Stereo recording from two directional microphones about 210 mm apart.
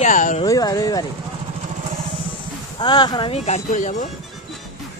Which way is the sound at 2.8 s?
20° left (ahead or behind).